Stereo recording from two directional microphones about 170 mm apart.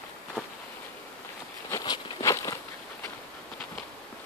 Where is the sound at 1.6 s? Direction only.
20° left (ahead or behind).